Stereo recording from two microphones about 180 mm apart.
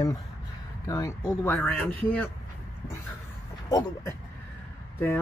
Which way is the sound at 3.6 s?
20° left (ahead or behind).